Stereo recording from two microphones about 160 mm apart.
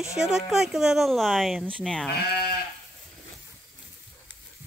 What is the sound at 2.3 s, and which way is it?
Sheep, 80° left.